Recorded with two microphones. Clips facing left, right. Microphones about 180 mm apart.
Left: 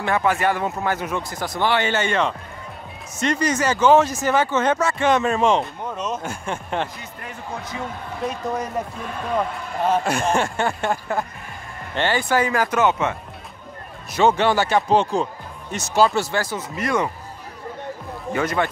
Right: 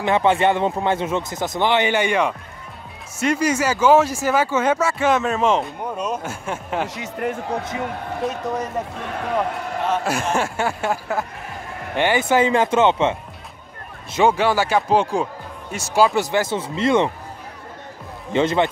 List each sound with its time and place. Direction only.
0.0 s speech: 25° right (ahead or behind); by 6.9 s 5° right (ahead or behind)
7.0 s speech: 65° right (ahead or behind)
8.2 s speech: centre (ahead or behind)
10.0 s speech: 5° right (ahead or behind)
11.9 s speech: 15° right (ahead or behind)
14.2 s speech: 5° right (ahead or behind); by 17.1 s 25° right (ahead or behind)
18.3 s speech: 25° right (ahead or behind)